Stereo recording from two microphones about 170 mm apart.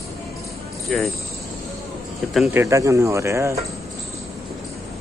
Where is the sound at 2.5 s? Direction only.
15° right (ahead or behind).